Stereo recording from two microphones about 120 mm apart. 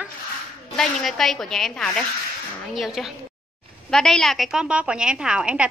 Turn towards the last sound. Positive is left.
turn(degrees=-10)  # may be behind; listen again after turning